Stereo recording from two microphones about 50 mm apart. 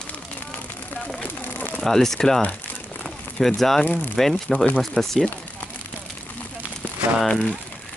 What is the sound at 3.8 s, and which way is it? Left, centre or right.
Speech, left.